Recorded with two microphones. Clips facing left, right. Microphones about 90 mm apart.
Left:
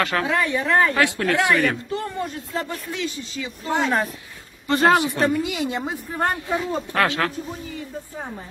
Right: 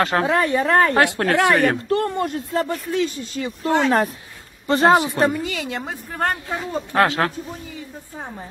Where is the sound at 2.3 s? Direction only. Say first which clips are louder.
Right 6 dB; 45° right (ahead or behind); by 4.1 s 60° right (ahead or behind).